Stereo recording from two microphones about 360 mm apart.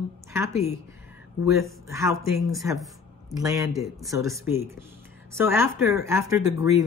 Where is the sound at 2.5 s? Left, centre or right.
Centre.